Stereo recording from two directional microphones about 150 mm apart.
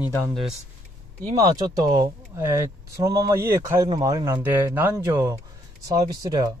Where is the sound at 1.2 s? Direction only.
25° right (ahead or behind).